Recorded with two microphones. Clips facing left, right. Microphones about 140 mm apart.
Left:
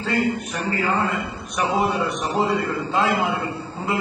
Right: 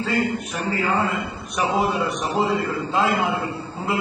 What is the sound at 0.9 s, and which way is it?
A man's voice, centre (ahead or behind).